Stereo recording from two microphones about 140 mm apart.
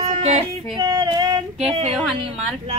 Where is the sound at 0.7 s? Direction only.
35° right (ahead or behind).